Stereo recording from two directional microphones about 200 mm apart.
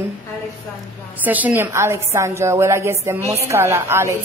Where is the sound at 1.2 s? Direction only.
10° right (ahead or behind).